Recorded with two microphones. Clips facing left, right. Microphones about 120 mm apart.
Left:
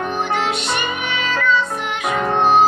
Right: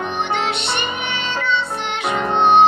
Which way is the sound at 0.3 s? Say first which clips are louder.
Left 1 dB; 25° right (ahead or behind).